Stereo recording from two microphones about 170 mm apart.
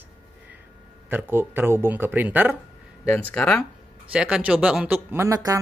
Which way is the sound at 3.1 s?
10° left (ahead or behind).